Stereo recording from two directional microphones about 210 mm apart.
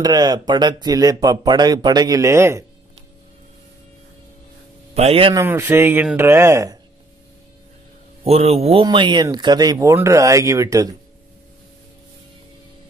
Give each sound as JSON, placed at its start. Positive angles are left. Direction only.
{"t": 0.0, "sound": "speech", "side_deg": -20}
{"t": 4.9, "sound": "speech", "side_deg": -30}
{"t": 5.4, "sound": "speech", "side_deg": -10}
{"t": 8.2, "sound": "speech", "side_deg": -30}